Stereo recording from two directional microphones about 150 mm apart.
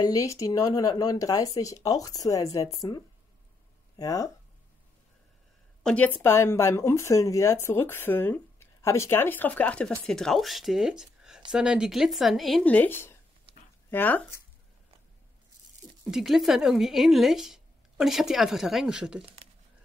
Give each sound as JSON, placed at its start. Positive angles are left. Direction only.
{"t": 0.0, "sound": "speech", "side_deg": 20}
{"t": 5.9, "sound": "speech", "side_deg": 10}
{"t": 12.6, "sound": "speech", "side_deg": 10}
{"t": 16.1, "sound": "speech", "side_deg": 0}
{"t": 19.2, "sound": "a sound", "side_deg": -40}